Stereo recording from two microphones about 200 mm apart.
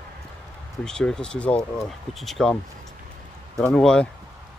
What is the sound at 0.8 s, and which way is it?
Speech, 5° left (ahead or behind).